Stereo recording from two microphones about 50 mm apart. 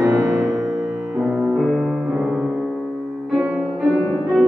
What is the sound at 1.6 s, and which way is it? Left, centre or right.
Music, centre.